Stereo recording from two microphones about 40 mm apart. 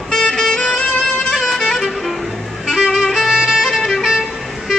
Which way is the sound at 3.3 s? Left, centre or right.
Centre.